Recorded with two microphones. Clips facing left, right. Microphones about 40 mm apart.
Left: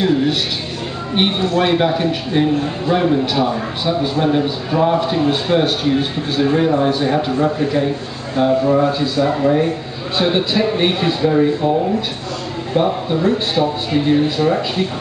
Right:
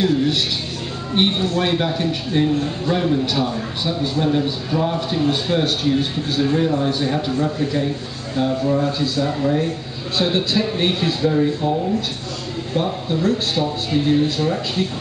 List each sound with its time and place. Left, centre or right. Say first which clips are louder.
0.0 s a man's voice: left 2 dB; centre